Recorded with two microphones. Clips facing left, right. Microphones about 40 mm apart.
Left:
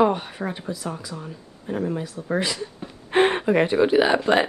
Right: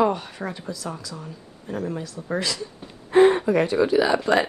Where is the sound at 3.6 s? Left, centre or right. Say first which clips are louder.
Left 1 dB; left.